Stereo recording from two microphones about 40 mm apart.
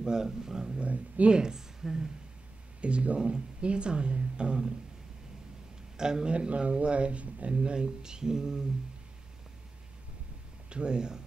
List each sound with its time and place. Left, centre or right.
0.0 s speech: centre
0.8 s speech: right
1.3 s a woman's voice: centre
2.8 s speech: right
5.9 s speech: centre
6.3 s speech: right
10.7 s speech: right